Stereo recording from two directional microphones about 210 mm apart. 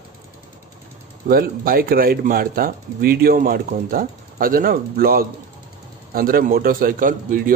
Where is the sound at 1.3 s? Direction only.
45° right (ahead or behind).